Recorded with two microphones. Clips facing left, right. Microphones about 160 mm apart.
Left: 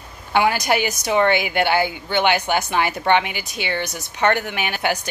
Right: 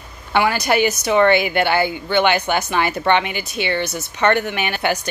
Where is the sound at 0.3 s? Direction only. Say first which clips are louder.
Right 1 dB; 15° left (ahead or behind).